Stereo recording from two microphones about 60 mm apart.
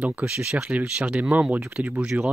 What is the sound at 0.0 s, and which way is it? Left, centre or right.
Speech, right.